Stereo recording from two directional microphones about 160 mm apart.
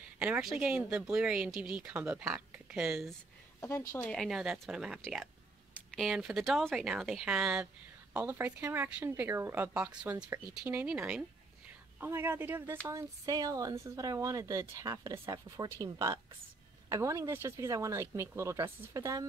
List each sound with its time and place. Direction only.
0.2 s speech: 5° right (ahead or behind)